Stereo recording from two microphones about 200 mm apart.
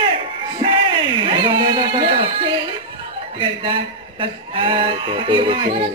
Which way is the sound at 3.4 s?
25° right (ahead or behind).